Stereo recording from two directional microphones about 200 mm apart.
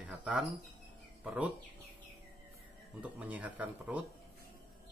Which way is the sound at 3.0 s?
5° right (ahead or behind).